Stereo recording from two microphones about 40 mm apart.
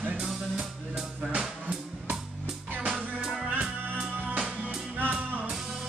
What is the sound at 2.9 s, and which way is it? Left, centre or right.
Music, centre.